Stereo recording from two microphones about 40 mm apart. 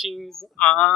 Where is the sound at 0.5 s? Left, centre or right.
Left.